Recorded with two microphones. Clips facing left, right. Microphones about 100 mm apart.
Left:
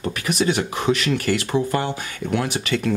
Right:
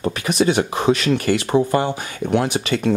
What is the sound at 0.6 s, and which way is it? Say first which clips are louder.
Speech: right 4 dB; 40° right (ahead or behind).